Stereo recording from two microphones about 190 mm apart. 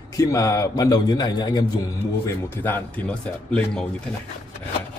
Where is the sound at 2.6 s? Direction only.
10° left (ahead or behind).